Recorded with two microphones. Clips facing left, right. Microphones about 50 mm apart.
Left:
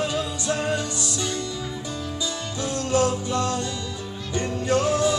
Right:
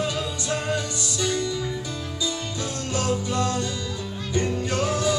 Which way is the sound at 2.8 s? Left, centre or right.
Left.